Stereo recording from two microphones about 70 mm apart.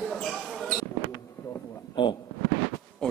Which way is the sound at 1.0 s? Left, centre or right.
Left.